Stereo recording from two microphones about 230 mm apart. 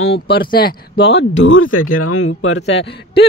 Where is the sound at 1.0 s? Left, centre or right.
Left.